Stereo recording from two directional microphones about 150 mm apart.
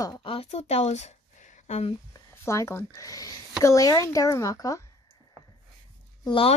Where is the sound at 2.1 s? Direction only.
20° left (ahead or behind).